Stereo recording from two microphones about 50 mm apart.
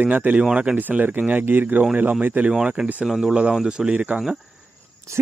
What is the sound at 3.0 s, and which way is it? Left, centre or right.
Speech, centre.